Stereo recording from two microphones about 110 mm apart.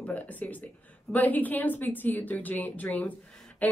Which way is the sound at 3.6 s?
15° left (ahead or behind).